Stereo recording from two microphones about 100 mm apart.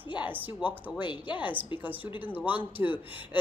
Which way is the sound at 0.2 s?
15° right (ahead or behind).